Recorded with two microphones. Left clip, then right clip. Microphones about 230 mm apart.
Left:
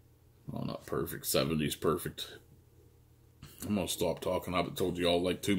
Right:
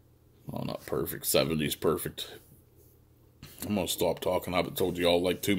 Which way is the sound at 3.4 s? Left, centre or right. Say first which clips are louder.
Right 3 dB; centre.